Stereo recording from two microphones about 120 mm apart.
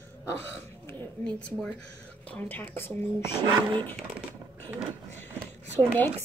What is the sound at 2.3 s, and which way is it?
Speech, 15° left (ahead or behind).